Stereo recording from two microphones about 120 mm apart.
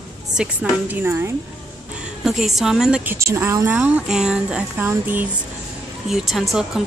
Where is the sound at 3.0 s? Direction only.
20° right (ahead or behind).